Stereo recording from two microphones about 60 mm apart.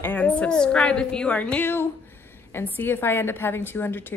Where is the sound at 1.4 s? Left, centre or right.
Left.